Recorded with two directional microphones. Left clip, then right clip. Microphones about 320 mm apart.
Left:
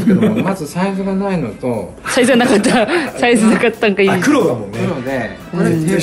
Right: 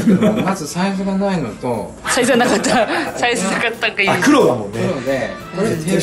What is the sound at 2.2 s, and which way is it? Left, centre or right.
Speech, left.